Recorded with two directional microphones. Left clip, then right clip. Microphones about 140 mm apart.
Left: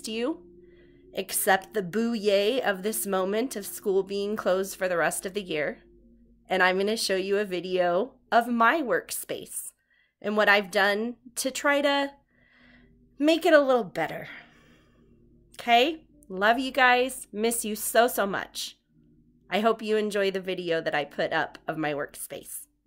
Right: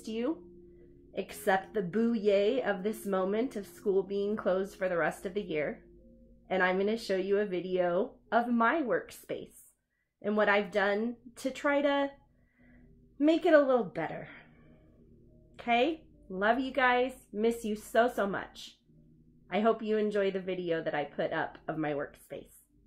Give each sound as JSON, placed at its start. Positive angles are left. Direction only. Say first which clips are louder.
{"t": 0.0, "sound": "a woman's voice", "louder": "left 4 dB", "side_deg": 20}
{"t": 13.2, "sound": "a woman's voice", "louder": "left 4 dB", "side_deg": 20}
{"t": 15.5, "sound": "a woman's voice", "louder": "left 7 dB", "side_deg": 20}